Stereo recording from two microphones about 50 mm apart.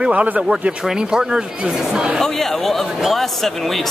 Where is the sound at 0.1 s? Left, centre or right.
Right.